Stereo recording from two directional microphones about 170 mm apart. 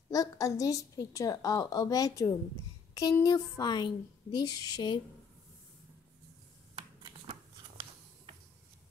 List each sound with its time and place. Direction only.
0.1 s a woman's voice: 20° left (ahead or behind)
6.7 s shuffling cards: 35° right (ahead or behind)